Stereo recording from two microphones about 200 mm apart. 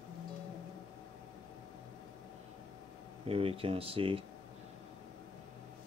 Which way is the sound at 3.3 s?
30° right (ahead or behind).